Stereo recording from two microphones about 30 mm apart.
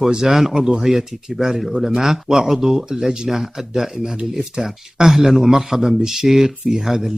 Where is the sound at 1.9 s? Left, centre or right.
Centre.